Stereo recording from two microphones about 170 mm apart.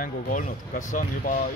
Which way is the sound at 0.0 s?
50° left (ahead or behind).